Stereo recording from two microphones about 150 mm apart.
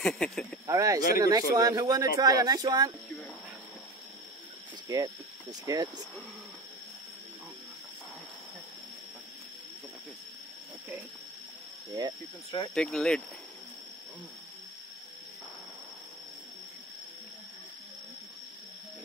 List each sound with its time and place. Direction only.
0.0 s speech: 5° left (ahead or behind)
0.7 s speech: 25° right (ahead or behind)
4.8 s speech: 25° right (ahead or behind)
12.7 s speech: 5° left (ahead or behind)